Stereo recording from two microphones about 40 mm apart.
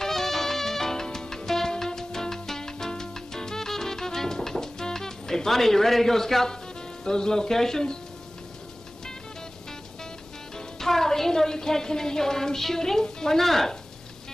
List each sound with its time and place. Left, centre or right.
0.0 s music: centre
7.1 s speech: centre
10.8 s a woman's voice: centre